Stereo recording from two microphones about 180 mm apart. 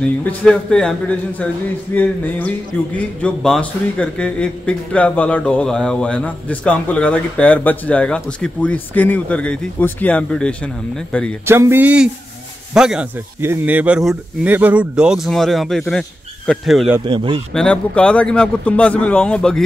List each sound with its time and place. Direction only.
0.0 s a man's voice: 5° left (ahead or behind)
11.4 s speech: 15° right (ahead or behind)
17.0 s speech: 25° right (ahead or behind)
17.6 s a man's voice: 5° left (ahead or behind)